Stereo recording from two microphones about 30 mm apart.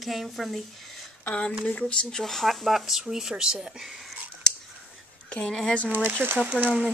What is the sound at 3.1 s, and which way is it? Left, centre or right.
Speech, centre.